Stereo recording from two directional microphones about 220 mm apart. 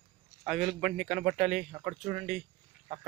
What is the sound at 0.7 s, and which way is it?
Speech, centre (ahead or behind).